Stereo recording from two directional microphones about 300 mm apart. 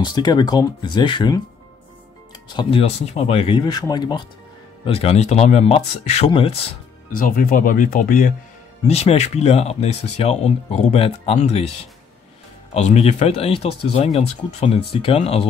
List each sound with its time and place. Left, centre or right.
0.0 s speech: centre
2.5 s speech: centre
12.7 s speech: left